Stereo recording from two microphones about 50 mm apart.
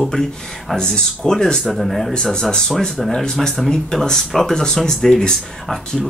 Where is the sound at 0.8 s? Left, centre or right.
Centre.